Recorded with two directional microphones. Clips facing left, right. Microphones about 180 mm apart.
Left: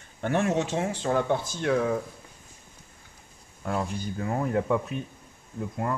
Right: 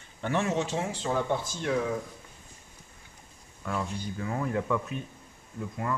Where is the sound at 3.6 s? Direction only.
45° left (ahead or behind).